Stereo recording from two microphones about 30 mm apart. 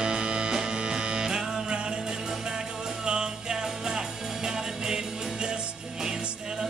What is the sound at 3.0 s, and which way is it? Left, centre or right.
Music, right.